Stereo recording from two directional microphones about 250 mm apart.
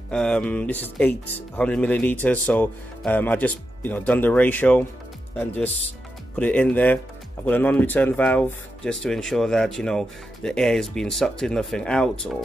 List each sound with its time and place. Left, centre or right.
0.1 s speech: centre
6.3 s speech: centre